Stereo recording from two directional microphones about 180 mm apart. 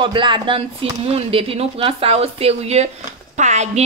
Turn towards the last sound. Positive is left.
turn(degrees=-40)  # may be behind; listen again after turning